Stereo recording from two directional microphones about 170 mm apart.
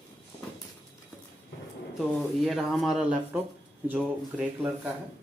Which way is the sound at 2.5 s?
Centre (ahead or behind).